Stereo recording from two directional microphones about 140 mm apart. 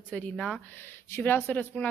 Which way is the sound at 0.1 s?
5° left (ahead or behind).